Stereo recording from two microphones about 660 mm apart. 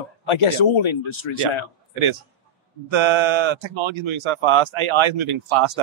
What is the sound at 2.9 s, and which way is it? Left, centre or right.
Speech, right.